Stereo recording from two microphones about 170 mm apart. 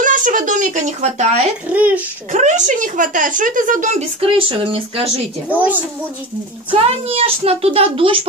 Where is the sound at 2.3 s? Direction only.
45° right (ahead or behind).